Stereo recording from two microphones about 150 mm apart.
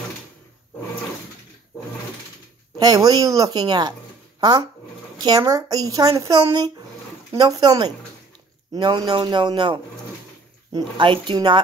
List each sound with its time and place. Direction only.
2.8 s a woman's voice: 25° right (ahead or behind)